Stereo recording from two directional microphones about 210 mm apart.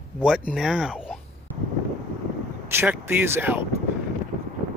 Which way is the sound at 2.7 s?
10° right (ahead or behind).